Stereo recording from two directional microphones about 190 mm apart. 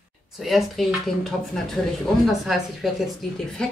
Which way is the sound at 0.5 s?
Centre (ahead or behind).